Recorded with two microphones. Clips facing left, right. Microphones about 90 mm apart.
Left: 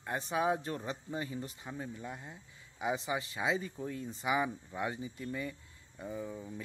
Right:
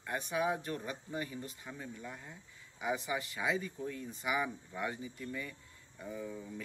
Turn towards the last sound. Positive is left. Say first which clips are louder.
# left 1 dB
turn(degrees=25)  # may be behind; listen again after turning